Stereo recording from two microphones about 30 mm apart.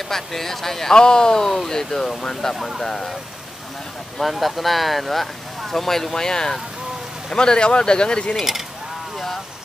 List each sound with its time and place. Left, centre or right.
0.1 s speech: centre
0.9 s speech: left
4.2 s speech: centre; by 8.4 s left